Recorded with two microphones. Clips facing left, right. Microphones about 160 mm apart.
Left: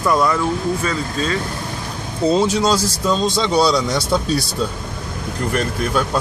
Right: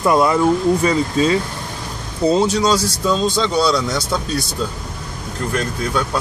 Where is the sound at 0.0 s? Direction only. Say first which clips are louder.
Right 2 dB; 20° right (ahead or behind).